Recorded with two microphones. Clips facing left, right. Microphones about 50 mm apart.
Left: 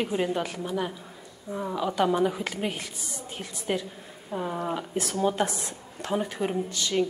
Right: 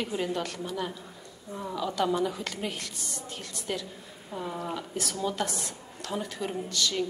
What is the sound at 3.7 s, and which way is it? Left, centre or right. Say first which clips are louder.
A woman's voice: left 5 dB; left.